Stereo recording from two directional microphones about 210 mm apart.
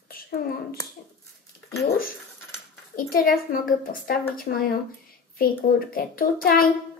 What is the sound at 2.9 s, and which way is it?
A child's voice, 45° left (ahead or behind).